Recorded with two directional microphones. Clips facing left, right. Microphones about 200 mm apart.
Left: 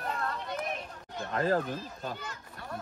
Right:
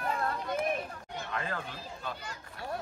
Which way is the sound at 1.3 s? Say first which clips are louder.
Left 10 dB; 40° left (ahead or behind).